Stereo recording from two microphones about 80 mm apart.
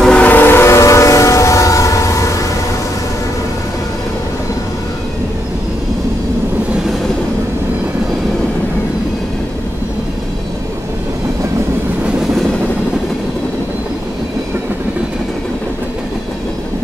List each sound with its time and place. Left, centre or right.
0.0 s train: centre
0.3 s train: left